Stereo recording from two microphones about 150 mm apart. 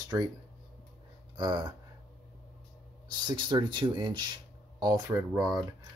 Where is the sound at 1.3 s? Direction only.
30° right (ahead or behind).